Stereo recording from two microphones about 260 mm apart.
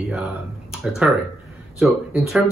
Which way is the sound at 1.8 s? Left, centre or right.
Centre.